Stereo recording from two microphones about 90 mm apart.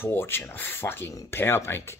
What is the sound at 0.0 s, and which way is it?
Speech, 25° left (ahead or behind).